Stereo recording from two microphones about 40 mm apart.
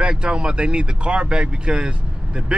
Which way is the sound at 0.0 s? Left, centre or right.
Right.